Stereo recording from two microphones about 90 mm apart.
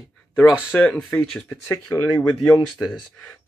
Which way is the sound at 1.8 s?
45° left (ahead or behind).